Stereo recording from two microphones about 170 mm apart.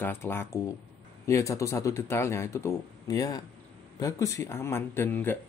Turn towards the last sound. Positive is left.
turn(degrees=10)  # may be behind; listen again after turning